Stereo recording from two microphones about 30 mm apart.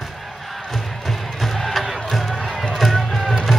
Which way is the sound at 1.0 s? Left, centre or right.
Centre.